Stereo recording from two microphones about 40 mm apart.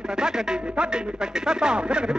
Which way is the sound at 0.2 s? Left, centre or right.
Centre.